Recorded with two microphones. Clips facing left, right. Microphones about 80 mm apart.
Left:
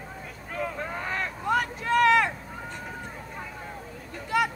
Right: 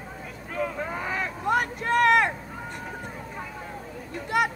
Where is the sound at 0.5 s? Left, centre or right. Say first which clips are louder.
Right 2 dB; centre.